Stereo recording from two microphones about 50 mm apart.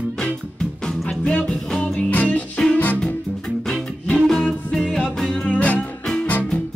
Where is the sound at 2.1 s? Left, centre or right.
Left.